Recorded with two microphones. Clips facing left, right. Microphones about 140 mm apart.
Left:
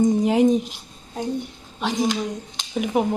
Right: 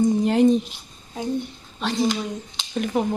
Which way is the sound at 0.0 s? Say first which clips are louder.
Even; 10° left (ahead or behind).